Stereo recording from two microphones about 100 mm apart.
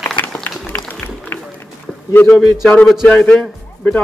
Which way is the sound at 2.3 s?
Centre (ahead or behind).